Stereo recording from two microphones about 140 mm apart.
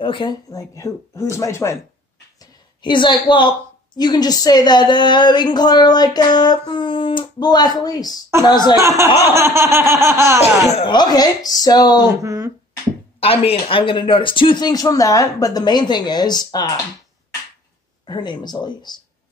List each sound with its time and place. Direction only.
0.0 s speech: 35° left (ahead or behind)
2.8 s a woman's voice: 35° left (ahead or behind)
8.7 s speech: 20° right (ahead or behind)
10.4 s speech: 50° left (ahead or behind)
10.9 s speech: 30° left (ahead or behind)
12.2 s speech: 20° right (ahead or behind)
13.2 s a woman's voice: 45° left (ahead or behind)
18.0 s a woman's voice: 30° left (ahead or behind)